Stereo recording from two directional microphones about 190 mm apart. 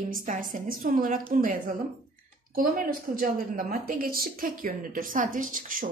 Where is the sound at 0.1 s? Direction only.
45° right (ahead or behind).